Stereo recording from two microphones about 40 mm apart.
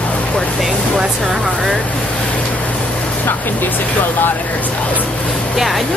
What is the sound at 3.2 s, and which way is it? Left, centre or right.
Speech, left.